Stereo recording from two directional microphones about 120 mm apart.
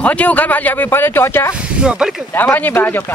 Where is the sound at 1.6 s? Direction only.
5° right (ahead or behind).